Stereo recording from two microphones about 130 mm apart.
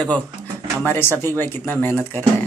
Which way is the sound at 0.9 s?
15° left (ahead or behind).